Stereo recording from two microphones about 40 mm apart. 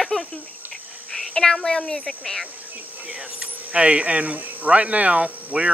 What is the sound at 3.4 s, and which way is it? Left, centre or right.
Speech, right.